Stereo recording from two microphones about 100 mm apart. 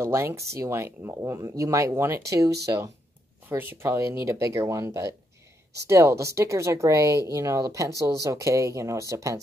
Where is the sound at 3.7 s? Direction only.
25° right (ahead or behind).